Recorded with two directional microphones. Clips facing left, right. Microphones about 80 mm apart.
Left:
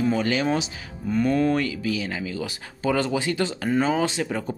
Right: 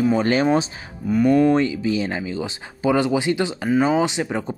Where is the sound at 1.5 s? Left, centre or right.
Right.